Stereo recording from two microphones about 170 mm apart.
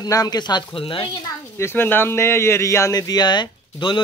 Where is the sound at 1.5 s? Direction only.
15° left (ahead or behind).